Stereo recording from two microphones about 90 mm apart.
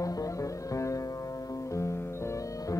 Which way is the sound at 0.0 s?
40° left (ahead or behind).